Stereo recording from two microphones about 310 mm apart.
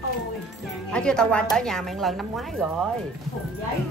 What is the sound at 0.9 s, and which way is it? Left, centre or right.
A woman's voice, centre.